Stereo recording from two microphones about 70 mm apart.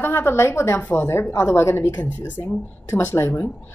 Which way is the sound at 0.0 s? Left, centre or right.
Left.